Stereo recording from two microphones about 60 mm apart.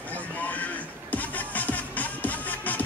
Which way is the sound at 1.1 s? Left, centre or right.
Left.